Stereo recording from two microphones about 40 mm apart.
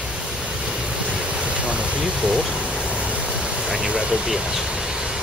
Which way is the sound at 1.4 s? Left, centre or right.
Right.